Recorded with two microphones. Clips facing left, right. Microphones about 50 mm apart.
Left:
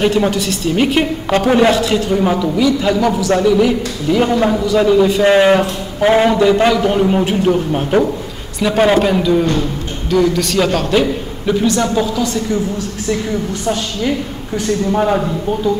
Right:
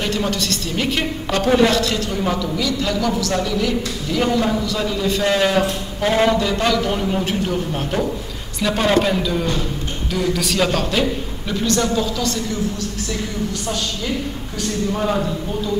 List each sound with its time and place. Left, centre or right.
0.0 s a woman's voice: centre
10.1 s a man's voice: centre